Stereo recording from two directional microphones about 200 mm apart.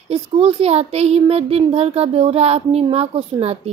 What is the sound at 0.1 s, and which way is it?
A woman's voice, 30° right (ahead or behind).